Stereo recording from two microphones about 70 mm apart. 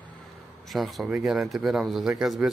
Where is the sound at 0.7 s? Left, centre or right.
Centre.